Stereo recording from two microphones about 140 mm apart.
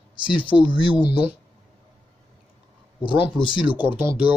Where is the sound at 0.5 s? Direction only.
5° right (ahead or behind).